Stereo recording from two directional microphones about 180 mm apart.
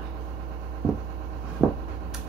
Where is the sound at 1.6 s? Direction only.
5° right (ahead or behind).